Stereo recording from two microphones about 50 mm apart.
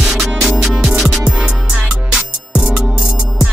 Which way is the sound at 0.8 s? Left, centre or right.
Centre.